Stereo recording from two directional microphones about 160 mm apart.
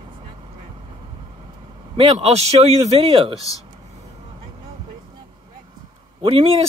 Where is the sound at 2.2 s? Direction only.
40° right (ahead or behind).